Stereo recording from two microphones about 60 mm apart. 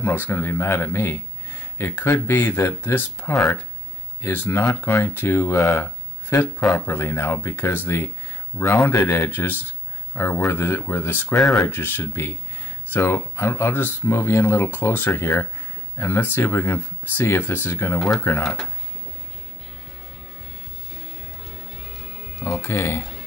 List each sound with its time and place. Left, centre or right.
0.0 s speech: left
11.3 s speech: centre
11.6 s speech: left
17.9 s speech: centre
21.5 s music: centre
22.6 s speech: left